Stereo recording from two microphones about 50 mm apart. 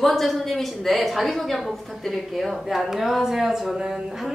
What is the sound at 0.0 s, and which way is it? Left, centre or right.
A woman's voice, centre.